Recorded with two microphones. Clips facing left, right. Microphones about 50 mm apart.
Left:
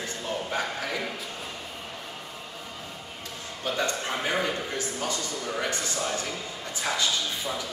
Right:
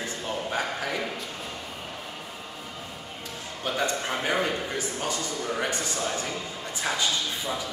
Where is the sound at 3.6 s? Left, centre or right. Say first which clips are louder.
Right 1 dB; centre.